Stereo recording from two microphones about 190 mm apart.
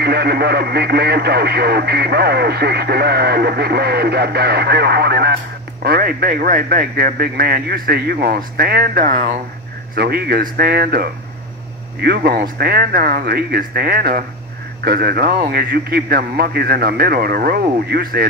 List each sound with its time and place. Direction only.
0.0 s speech: 55° right (ahead or behind)
9.9 s speech: 55° right (ahead or behind)